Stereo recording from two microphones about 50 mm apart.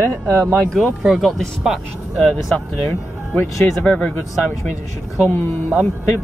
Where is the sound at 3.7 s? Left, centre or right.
Centre.